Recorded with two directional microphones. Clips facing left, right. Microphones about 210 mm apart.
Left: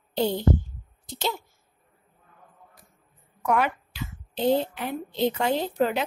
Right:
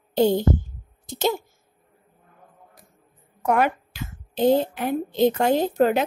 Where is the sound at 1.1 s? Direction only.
45° right (ahead or behind).